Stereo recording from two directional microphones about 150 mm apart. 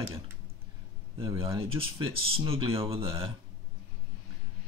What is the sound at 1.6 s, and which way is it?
Speech, 40° right (ahead or behind).